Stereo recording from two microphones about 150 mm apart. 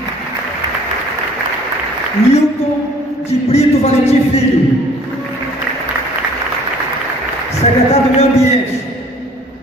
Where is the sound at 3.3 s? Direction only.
45° left (ahead or behind).